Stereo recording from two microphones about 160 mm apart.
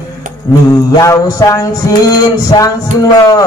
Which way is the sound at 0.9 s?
20° left (ahead or behind).